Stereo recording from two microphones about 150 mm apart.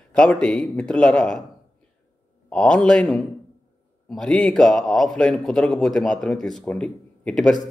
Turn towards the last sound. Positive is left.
turn(degrees=5)  # may be behind; listen again after turning